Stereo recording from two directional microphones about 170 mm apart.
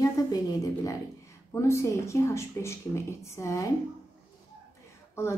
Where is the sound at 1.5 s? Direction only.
15° left (ahead or behind).